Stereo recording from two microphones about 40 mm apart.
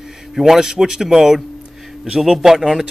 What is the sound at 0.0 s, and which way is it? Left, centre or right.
A man's voice, centre.